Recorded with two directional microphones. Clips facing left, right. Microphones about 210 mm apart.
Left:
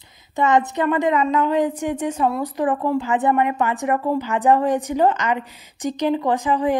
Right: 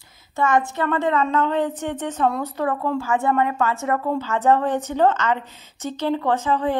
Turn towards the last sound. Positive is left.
turn(degrees=15)  # may be behind; listen again after turning